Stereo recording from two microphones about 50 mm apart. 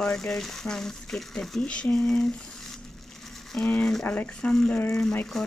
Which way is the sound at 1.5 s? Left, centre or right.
Left.